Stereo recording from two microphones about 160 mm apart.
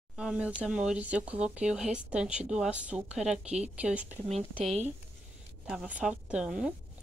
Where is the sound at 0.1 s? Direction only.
5° right (ahead or behind).